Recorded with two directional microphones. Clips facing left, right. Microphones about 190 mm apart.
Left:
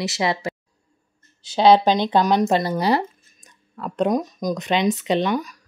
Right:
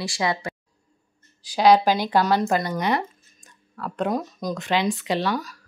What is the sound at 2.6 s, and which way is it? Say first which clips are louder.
Speech: left 4 dB; 30° left (ahead or behind).